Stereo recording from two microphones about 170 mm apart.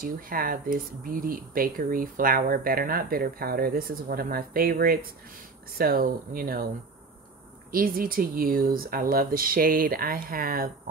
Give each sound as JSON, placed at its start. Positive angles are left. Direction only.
{"t": 0.0, "sound": "speech", "side_deg": -55}
{"t": 7.7, "sound": "speech", "side_deg": -60}